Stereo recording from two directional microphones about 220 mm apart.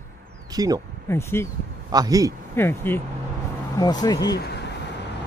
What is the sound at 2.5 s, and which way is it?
Speech, 10° left (ahead or behind).